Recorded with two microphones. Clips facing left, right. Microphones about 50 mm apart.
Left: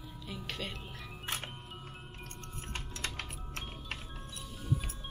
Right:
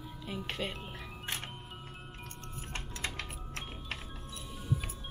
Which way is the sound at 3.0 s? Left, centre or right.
Right.